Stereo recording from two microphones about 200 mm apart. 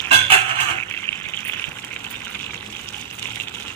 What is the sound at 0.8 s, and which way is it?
Water, 10° left (ahead or behind).